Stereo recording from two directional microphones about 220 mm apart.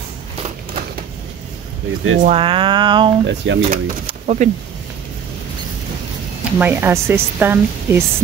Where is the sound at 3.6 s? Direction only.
35° right (ahead or behind).